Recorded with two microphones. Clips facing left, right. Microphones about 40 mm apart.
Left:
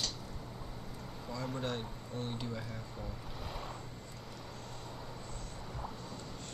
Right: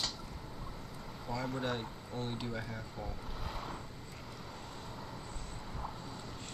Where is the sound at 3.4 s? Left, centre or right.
Centre.